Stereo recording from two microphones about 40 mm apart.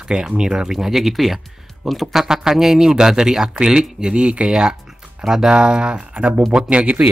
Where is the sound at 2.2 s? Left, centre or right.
Centre.